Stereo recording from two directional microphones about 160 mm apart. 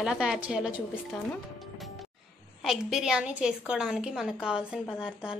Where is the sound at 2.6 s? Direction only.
Centre (ahead or behind).